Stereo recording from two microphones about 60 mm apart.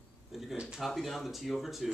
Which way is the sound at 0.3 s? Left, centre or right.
Centre.